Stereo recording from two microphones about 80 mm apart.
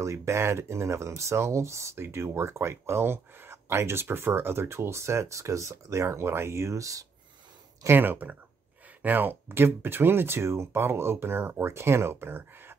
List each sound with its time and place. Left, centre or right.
0.0 s speech: right
7.8 s speech: right